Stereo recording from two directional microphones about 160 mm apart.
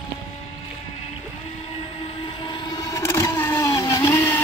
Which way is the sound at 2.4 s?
25° left (ahead or behind).